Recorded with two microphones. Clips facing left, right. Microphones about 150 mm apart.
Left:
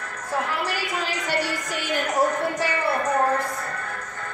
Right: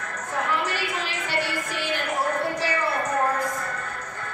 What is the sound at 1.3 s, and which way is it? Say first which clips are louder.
Music: even; 40° left (ahead or behind).